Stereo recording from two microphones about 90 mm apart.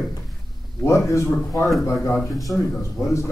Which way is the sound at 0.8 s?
30° left (ahead or behind).